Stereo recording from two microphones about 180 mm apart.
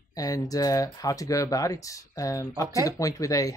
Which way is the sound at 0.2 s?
20° left (ahead or behind).